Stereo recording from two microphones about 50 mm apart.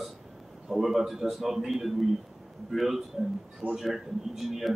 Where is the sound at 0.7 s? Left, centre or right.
Centre.